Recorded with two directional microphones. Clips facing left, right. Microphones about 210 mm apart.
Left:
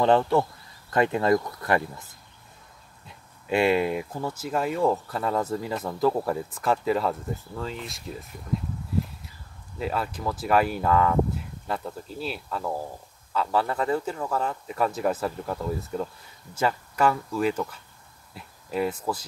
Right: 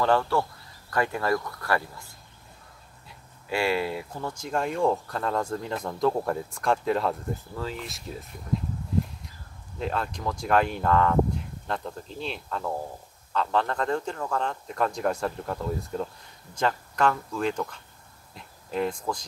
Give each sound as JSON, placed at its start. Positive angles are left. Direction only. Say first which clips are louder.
{"t": 0.0, "sound": "speech", "louder": "left 3 dB", "side_deg": 20}
{"t": 3.4, "sound": "speech", "louder": "left 4 dB", "side_deg": 20}
{"t": 9.8, "sound": "speech", "louder": "left 1 dB", "side_deg": 5}
{"t": 18.3, "sound": "a sound", "louder": "left 1 dB", "side_deg": 5}